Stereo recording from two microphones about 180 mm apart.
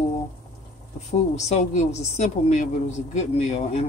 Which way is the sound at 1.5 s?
40° left (ahead or behind).